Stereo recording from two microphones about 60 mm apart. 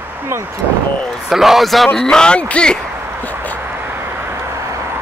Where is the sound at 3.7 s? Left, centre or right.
Right.